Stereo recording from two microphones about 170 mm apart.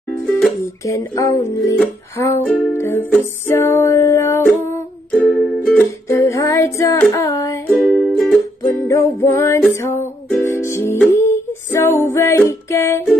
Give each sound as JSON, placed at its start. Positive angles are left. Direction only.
{"t": 0.4, "sound": "music", "side_deg": 20}
{"t": 7.7, "sound": "music", "side_deg": 0}
{"t": 8.6, "sound": "music", "side_deg": 15}